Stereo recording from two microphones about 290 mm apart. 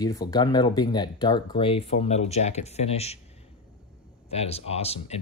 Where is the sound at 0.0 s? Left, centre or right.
Centre.